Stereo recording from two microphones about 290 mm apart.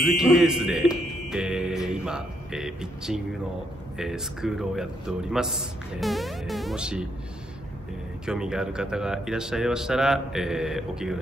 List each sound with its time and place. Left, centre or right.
0.0 s a man's voice: centre
8.3 s a man's voice: centre